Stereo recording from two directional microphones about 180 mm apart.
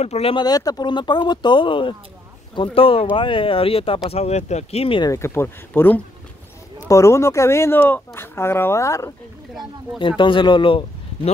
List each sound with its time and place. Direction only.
0.0 s speech: 35° left (ahead or behind)
5.1 s speech: 15° left (ahead or behind)
9.9 s speech: 25° left (ahead or behind)